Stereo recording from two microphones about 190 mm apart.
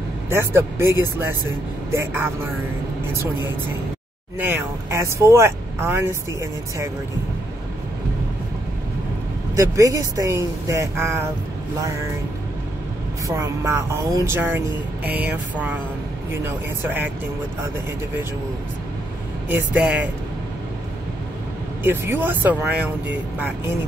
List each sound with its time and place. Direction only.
0.3 s speech: 15° right (ahead or behind)
4.5 s speech: 15° right (ahead or behind)
9.6 s speech: 15° right (ahead or behind)
13.3 s speech: 15° right (ahead or behind)
19.5 s speech: 10° right (ahead or behind)
21.8 s speech: 10° right (ahead or behind)